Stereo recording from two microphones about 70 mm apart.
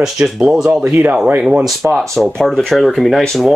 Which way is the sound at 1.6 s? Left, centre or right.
Centre.